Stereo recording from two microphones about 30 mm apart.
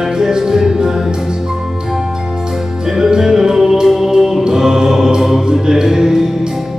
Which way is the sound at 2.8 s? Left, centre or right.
Centre.